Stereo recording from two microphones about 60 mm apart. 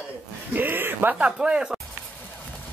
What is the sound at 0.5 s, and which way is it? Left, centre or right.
Music, right.